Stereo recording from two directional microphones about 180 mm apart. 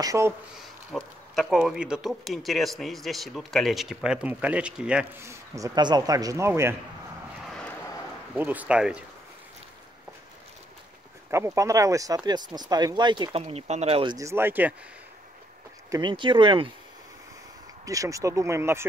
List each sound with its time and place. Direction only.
0.0 s speech: 15° right (ahead or behind)
0.9 s speech: centre (ahead or behind); by 6.8 s 15° right (ahead or behind)
7.4 s vehicle: 5° left (ahead or behind)
8.4 s speech: 10° right (ahead or behind)
11.2 s speech: 15° right (ahead or behind)
13.4 s speech: 35° right (ahead or behind)
14.1 s speech: 15° right (ahead or behind)
15.9 s speech: 25° right (ahead or behind)
17.8 s speech: 20° right (ahead or behind)